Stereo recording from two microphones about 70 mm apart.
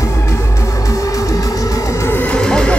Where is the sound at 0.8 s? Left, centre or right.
Left.